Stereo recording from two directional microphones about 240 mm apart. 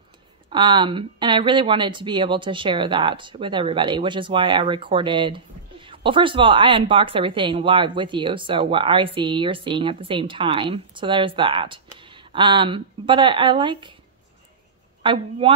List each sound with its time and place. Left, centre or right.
0.5 s speech: centre
15.0 s speech: right